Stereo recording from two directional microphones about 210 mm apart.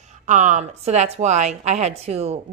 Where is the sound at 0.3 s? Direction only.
35° right (ahead or behind).